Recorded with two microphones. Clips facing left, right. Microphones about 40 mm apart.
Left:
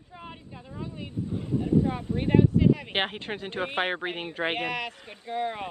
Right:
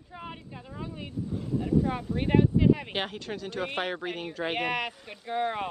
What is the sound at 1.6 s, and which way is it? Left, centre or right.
Speech, centre.